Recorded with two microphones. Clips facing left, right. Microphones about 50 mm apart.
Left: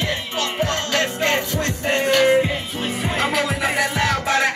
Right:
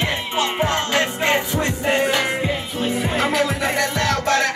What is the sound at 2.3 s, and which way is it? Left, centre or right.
Music, centre.